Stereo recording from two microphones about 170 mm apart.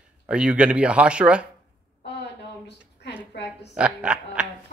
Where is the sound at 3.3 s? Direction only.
90° left.